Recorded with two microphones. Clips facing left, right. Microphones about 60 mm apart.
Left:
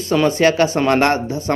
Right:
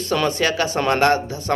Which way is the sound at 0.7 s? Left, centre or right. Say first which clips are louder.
Left 4 dB; centre.